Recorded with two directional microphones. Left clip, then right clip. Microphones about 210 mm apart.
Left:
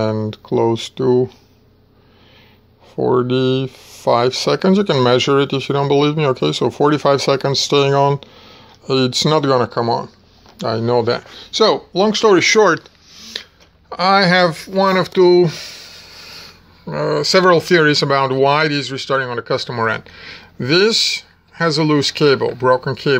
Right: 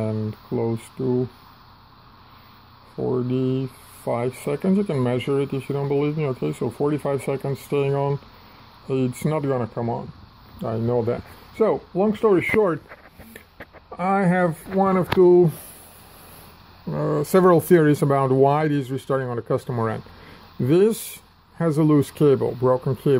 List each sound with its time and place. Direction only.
0.0 s speech: 30° left (ahead or behind)
3.0 s speech: 35° left (ahead or behind)
11.1 s speech: 10° left (ahead or behind)
13.8 s speech: 5° left (ahead or behind)
17.1 s speech: 20° right (ahead or behind)